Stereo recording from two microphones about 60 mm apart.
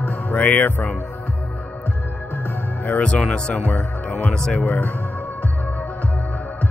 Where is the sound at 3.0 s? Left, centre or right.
Centre.